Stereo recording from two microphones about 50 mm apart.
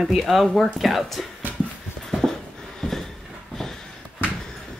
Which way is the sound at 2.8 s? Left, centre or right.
Centre.